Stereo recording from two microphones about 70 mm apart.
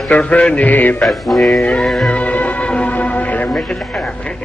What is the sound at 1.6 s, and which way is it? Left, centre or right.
Music, centre.